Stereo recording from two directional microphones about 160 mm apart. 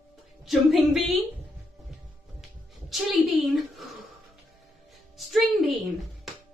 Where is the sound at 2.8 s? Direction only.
Centre (ahead or behind).